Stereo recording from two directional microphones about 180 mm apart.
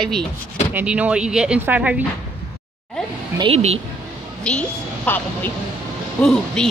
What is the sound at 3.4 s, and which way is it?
Speech, 35° right (ahead or behind).